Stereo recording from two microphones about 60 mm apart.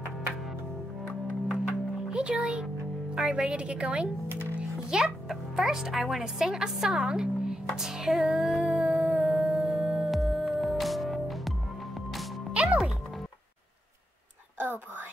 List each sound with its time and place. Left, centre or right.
1.5 s music: centre
3.2 s a woman's voice: centre
4.9 s a woman's voice: centre
8.7 s music: centre
10.1 s music: centre
12.6 s music: centre